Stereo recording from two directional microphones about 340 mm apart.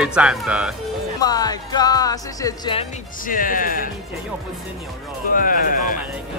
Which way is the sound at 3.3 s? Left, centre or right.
Left.